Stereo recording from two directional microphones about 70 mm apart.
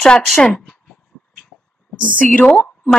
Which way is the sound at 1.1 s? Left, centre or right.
Centre.